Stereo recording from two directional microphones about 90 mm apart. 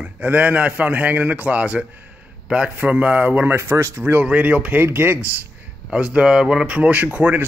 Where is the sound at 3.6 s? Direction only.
30° right (ahead or behind).